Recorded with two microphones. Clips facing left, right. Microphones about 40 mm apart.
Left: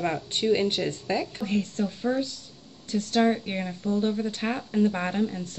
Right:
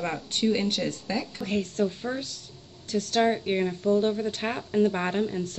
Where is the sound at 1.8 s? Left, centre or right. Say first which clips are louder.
Left 3 dB; centre.